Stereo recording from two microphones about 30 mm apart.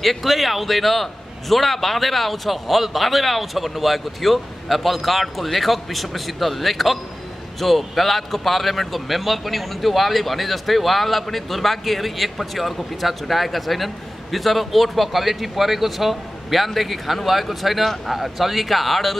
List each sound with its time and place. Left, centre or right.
0.0 s a man's voice: centre